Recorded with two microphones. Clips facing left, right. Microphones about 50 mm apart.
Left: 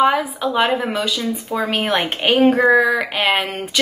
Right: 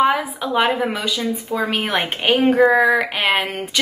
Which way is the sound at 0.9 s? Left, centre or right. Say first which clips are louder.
Left 1 dB; centre.